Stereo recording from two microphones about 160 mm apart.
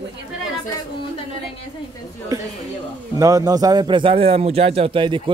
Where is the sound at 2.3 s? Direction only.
20° right (ahead or behind).